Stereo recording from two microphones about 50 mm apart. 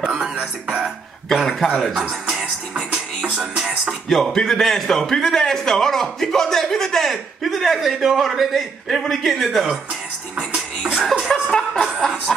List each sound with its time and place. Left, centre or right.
0.0 s music: right
1.3 s speech: centre
2.0 s speech: right
3.2 s music: right
4.1 s a man's voice: centre
11.5 s snicker: centre
12.3 s a man's voice: centre